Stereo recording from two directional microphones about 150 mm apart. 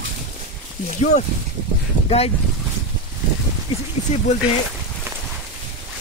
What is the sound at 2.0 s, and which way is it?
Speech, 40° left (ahead or behind).